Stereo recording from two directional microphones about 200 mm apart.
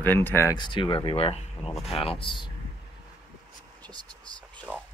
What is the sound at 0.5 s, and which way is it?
Speech, 25° left (ahead or behind).